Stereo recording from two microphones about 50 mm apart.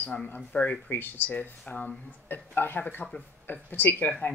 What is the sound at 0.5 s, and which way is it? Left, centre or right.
Speech, left.